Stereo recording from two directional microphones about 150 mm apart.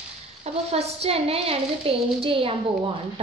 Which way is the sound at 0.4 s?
45° right (ahead or behind).